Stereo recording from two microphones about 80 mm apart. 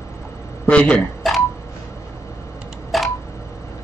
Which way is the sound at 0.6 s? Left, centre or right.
Centre.